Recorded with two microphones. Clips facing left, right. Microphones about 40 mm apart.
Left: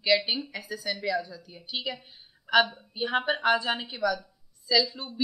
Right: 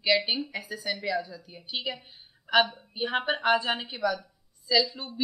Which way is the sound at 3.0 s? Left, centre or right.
Centre.